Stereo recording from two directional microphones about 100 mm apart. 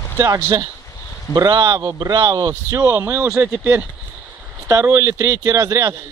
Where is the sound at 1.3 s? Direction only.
45° right (ahead or behind).